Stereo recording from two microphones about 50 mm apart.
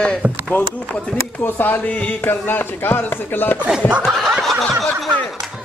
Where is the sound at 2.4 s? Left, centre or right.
Left.